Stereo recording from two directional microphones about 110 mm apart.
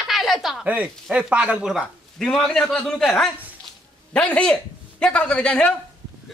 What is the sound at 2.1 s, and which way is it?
A man's voice, 5° left (ahead or behind).